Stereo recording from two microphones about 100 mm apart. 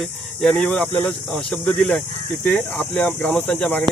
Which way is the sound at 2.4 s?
15° left (ahead or behind).